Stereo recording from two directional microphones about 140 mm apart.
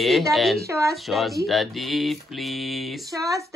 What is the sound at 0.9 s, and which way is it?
Speech, centre (ahead or behind).